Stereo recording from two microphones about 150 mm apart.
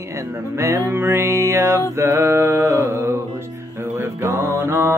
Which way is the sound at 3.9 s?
20° right (ahead or behind).